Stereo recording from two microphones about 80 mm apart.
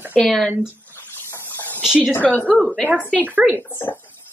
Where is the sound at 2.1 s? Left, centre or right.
Left.